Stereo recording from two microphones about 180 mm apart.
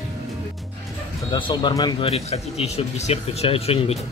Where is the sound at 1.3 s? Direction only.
25° left (ahead or behind).